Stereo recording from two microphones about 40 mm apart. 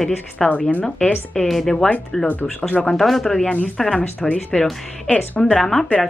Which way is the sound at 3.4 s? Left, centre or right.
Left.